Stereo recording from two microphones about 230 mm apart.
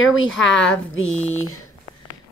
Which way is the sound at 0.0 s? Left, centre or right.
Left.